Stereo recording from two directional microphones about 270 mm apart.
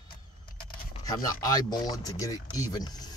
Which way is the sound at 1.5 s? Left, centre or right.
Centre.